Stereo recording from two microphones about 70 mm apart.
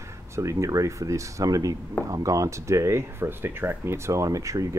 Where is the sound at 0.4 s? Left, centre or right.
Right.